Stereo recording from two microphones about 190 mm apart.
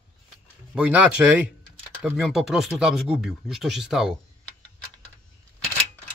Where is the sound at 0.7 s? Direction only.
5° right (ahead or behind).